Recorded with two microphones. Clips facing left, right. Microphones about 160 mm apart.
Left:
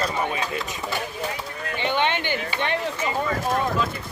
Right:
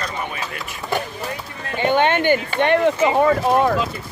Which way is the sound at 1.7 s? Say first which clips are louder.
Right 7 dB; 50° right (ahead or behind).